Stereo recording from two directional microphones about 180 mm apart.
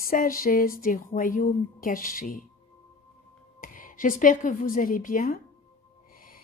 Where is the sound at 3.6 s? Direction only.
50° left (ahead or behind).